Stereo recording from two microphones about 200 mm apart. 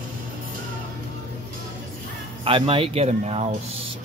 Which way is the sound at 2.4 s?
25° right (ahead or behind).